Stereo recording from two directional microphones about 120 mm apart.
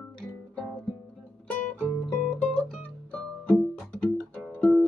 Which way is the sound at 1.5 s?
15° left (ahead or behind).